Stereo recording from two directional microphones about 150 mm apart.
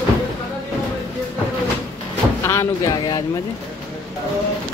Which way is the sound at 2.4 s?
25° left (ahead or behind).